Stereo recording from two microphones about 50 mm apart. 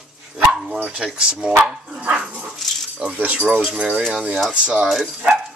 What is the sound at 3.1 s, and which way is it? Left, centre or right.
Speech, right.